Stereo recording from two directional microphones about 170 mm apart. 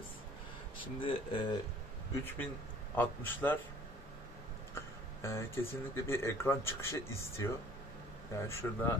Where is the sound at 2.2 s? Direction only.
10° left (ahead or behind).